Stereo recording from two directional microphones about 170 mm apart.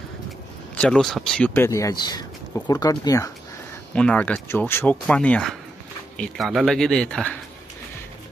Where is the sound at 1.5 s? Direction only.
15° left (ahead or behind).